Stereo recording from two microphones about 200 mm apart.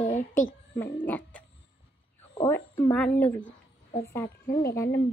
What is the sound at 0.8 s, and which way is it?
A woman's voice, 10° left (ahead or behind).